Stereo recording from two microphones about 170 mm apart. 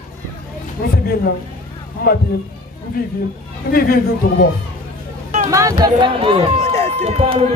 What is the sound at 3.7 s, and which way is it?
Speech, 60° left (ahead or behind).